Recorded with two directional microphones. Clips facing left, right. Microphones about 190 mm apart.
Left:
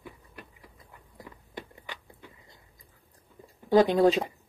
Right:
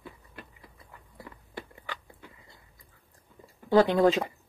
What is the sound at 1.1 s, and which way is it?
Biting, 15° left (ahead or behind).